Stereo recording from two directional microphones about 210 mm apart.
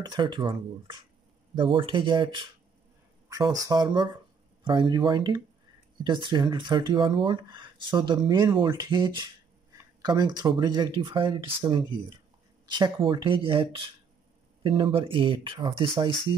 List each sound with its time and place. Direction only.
0.0 s speech: 20° right (ahead or behind)